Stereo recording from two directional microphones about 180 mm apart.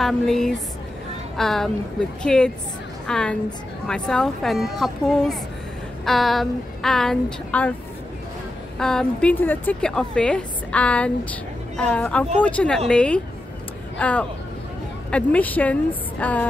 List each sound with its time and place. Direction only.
0.0 s a woman's voice: centre (ahead or behind)
8.7 s a woman's voice: 5° left (ahead or behind)